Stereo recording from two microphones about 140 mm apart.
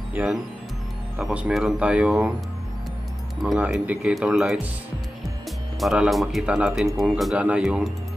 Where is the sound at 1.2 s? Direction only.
10° right (ahead or behind).